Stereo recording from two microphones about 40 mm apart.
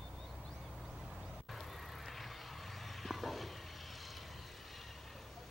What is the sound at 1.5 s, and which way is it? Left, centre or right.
Vehicle, centre.